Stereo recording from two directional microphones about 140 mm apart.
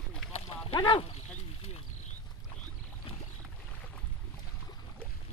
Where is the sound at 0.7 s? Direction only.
35° left (ahead or behind).